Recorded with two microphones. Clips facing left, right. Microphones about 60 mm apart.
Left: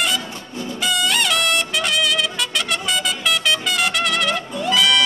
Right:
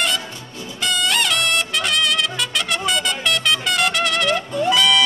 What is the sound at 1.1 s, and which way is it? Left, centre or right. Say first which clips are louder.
Music: right 1 dB; centre.